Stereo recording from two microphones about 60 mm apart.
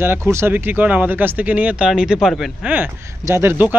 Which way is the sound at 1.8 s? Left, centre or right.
Centre.